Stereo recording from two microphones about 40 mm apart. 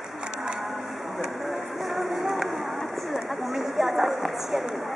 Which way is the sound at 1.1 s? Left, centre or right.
Centre.